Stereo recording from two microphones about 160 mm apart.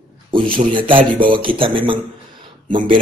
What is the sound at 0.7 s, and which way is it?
Speech, 30° right (ahead or behind).